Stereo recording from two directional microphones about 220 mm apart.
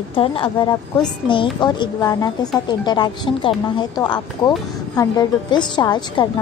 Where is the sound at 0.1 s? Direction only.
25° left (ahead or behind).